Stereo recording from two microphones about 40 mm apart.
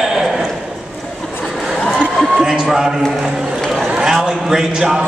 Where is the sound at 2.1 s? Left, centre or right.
Centre.